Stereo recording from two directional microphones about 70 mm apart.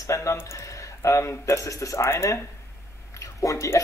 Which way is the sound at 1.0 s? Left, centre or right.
Left.